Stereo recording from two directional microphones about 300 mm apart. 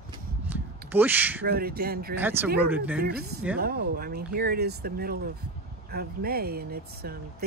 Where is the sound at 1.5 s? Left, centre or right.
Right.